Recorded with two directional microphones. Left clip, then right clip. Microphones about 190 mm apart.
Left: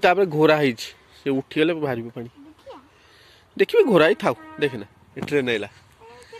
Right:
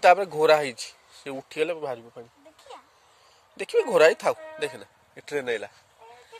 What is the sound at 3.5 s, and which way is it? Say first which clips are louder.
Speech: left 6 dB; centre (ahead or behind).